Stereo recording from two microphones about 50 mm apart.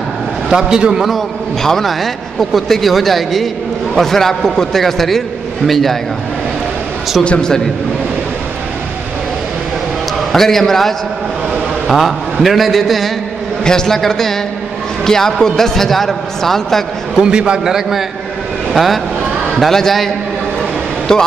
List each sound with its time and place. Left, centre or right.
0.5 s a man's voice: centre
1.6 s a man's voice: centre
7.2 s a man's voice: centre
10.3 s a man's voice: centre
17.2 s a man's voice: centre
21.1 s a man's voice: centre